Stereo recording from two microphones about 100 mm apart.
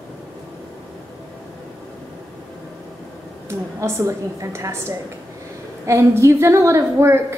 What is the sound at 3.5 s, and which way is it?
A woman's voice, 25° right (ahead or behind).